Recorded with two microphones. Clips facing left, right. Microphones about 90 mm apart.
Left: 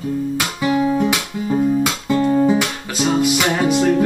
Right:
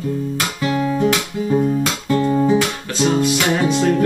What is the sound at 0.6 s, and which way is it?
Guitar, 15° left (ahead or behind).